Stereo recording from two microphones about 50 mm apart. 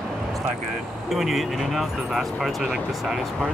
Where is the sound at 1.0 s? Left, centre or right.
Centre.